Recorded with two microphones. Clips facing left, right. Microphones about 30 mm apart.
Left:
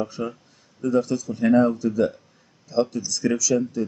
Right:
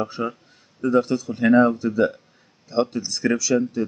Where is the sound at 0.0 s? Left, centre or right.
Right.